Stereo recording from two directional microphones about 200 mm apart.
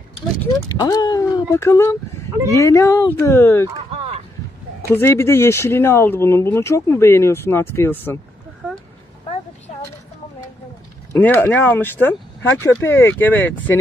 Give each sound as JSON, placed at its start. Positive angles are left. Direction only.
{"t": 0.4, "sound": "speech", "side_deg": 15}
{"t": 4.8, "sound": "speech", "side_deg": 10}
{"t": 11.1, "sound": "speech", "side_deg": 10}